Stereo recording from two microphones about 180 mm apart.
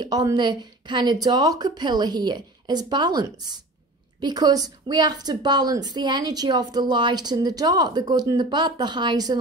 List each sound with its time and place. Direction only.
0.0 s a woman's voice: 20° right (ahead or behind)